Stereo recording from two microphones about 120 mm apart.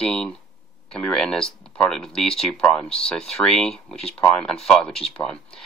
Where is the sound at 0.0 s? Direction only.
5° left (ahead or behind).